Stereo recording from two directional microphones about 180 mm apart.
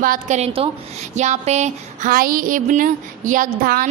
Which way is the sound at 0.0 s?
50° right (ahead or behind).